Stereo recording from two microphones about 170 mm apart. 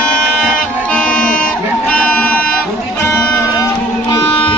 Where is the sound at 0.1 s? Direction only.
5° left (ahead or behind).